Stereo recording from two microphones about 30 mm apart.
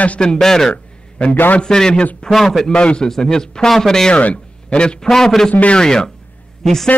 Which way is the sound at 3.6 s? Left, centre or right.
Centre.